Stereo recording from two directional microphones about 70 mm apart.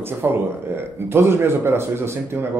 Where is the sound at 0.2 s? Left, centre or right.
Right.